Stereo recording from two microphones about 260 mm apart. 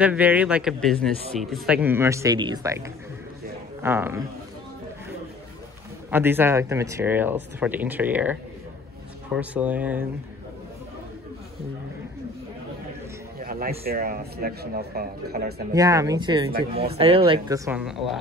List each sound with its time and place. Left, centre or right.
0.0 s speech: centre
6.0 s speech: centre
9.4 s speech: centre
13.4 s speech: right
15.7 s speech: centre
17.6 s speech: centre